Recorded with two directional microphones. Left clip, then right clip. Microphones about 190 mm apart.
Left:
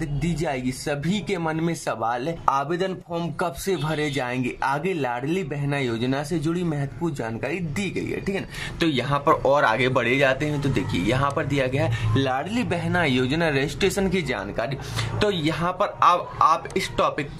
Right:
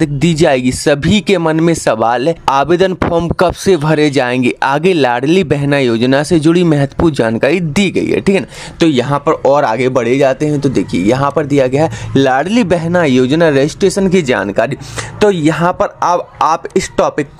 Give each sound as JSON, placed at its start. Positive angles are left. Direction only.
{"t": 0.0, "sound": "speech", "side_deg": -45}
{"t": 9.2, "sound": "speech", "side_deg": -20}